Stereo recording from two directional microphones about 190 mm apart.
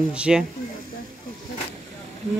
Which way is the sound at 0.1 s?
5° right (ahead or behind).